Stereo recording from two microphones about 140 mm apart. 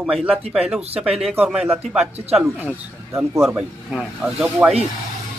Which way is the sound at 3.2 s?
20° right (ahead or behind).